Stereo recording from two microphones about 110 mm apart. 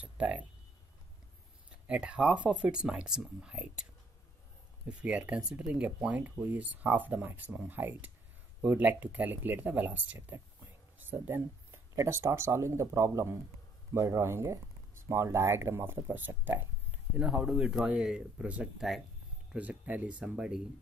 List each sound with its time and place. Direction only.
0.0 s speech: 15° right (ahead or behind)
1.7 s speech: 10° right (ahead or behind)
4.8 s speech: 10° right (ahead or behind)
17.3 s speech: 5° right (ahead or behind)